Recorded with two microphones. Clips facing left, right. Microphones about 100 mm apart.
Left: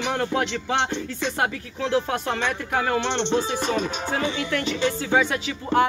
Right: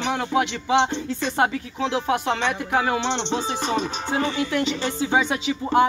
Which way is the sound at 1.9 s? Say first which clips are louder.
Even; 15° right (ahead or behind).